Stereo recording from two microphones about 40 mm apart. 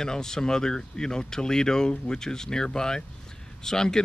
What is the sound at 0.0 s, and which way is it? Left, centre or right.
Speech, centre.